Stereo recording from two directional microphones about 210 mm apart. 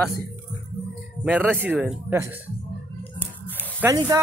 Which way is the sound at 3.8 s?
15° right (ahead or behind).